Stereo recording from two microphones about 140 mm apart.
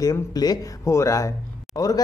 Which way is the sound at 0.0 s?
25° left (ahead or behind).